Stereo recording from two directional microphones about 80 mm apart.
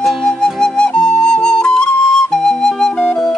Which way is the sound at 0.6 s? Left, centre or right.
Centre.